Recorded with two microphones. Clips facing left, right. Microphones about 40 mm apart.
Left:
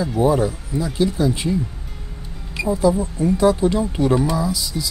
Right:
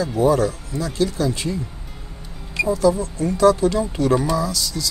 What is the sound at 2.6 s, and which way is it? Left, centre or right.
Speech, left.